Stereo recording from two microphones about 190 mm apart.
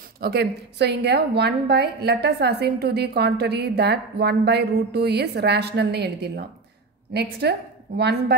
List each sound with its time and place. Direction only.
0.2 s a woman's voice: 60° right (ahead or behind)